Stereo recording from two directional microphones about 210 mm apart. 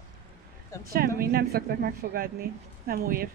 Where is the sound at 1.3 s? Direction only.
45° right (ahead or behind).